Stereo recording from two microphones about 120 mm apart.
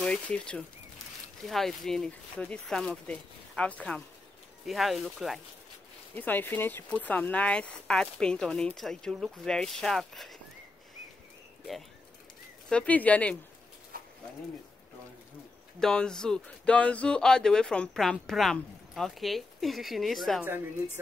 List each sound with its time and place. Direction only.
0.0 s speech: 10° left (ahead or behind)
4.6 s speech: centre (ahead or behind)
6.1 s speech: 15° left (ahead or behind)
12.6 s speech: 10° left (ahead or behind)
15.8 s speech: 5° left (ahead or behind)
20.4 s speech: 15° right (ahead or behind)